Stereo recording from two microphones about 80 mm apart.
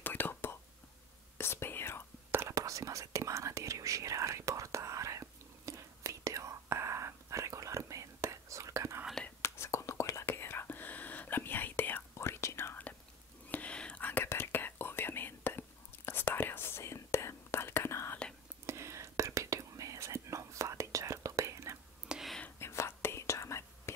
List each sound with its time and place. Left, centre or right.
0.0 s whispering: left
2.3 s whispering: right
9.4 s whispering: left
12.2 s whispering: left
13.5 s whispering: centre
14.2 s whispering: left
18.7 s whispering: right
22.0 s whispering: centre
22.6 s whispering: left